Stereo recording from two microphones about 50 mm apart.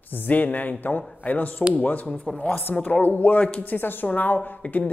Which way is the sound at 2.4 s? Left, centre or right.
Left.